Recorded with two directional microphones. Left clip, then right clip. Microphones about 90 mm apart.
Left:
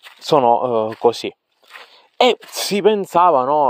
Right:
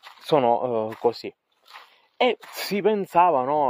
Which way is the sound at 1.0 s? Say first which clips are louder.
Left 8 dB; 90° left.